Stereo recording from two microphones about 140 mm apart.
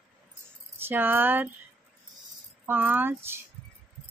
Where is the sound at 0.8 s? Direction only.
15° right (ahead or behind).